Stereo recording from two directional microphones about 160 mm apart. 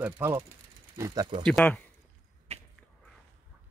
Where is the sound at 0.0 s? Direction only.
15° right (ahead or behind).